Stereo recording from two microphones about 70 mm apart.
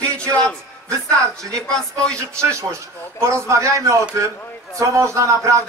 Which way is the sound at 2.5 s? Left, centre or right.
Right.